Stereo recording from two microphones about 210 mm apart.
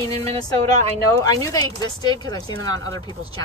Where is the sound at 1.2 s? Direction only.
15° left (ahead or behind).